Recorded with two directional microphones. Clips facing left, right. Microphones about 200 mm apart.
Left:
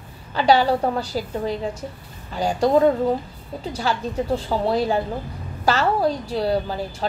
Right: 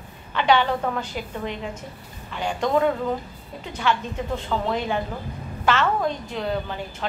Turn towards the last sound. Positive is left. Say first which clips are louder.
# left 4 dB
turn(degrees=35)  # may be behind; listen again after turning